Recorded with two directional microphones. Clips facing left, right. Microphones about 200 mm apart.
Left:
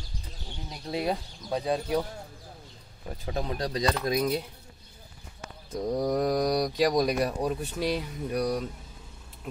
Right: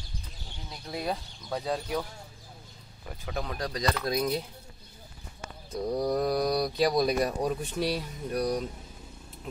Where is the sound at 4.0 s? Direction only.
10° left (ahead or behind).